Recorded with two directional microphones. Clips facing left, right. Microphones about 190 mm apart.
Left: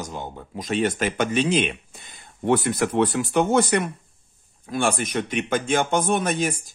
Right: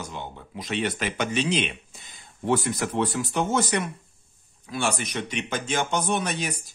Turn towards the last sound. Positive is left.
turn(degrees=45)  # may be behind; listen again after turning